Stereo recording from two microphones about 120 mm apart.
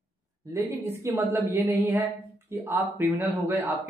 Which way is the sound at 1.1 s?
20° right (ahead or behind).